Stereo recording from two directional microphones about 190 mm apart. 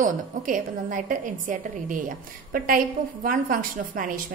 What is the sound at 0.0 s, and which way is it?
A woman's voice, 45° right (ahead or behind).